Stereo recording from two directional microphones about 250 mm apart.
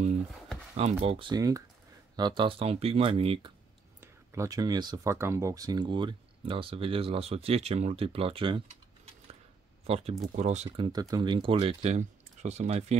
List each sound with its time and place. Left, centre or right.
0.7 s speech: right
10.9 s speech: centre